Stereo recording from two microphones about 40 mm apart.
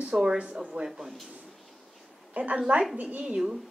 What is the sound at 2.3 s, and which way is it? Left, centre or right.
A woman's voice, right.